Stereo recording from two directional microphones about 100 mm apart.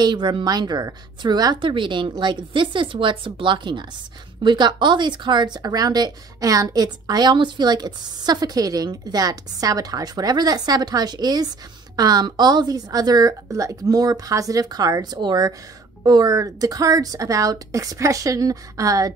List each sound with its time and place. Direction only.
0.0 s a woman's voice: 50° right (ahead or behind)